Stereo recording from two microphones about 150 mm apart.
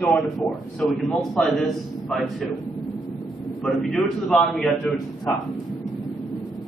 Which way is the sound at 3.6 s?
Centre (ahead or behind).